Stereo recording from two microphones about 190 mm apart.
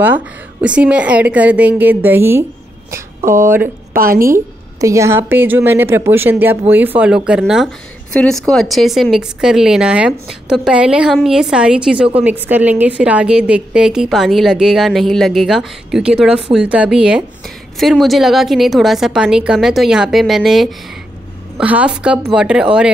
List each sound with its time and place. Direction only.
0.0 s a woman's voice: 10° right (ahead or behind)
3.9 s a woman's voice: 50° right (ahead or behind)
4.3 s a woman's voice: 15° right (ahead or behind)